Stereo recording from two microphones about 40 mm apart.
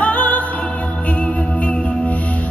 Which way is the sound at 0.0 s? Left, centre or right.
Left.